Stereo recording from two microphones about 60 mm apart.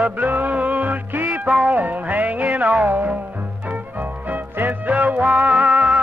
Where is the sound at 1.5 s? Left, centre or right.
Centre.